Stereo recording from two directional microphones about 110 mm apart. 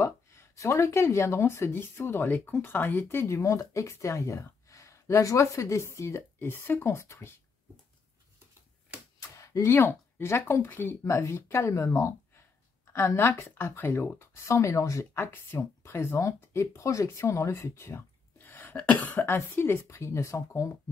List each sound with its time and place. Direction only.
0.0 s speech: 25° left (ahead or behind)
9.2 s speech: 25° left (ahead or behind)